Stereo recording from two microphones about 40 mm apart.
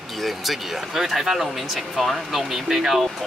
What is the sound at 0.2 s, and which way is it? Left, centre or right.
Speech, centre.